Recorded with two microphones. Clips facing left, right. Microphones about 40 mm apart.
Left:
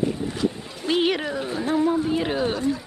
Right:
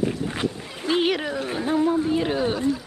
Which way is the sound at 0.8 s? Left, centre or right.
Centre.